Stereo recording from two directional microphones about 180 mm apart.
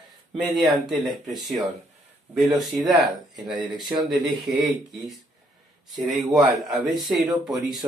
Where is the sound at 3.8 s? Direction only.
25° right (ahead or behind).